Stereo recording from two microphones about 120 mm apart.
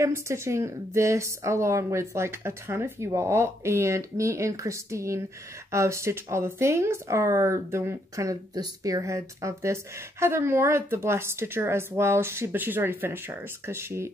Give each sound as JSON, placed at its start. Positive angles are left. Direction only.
{"t": 0.0, "sound": "speech", "side_deg": -25}